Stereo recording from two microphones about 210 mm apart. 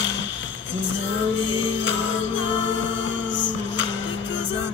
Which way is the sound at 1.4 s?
60° left (ahead or behind).